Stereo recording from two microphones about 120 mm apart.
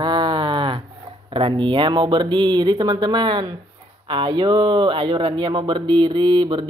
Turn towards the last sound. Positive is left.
turn(degrees=-40)  # may be behind; listen again after turning